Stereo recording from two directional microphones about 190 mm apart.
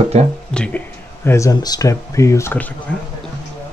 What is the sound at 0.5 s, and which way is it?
Speech, 5° left (ahead or behind).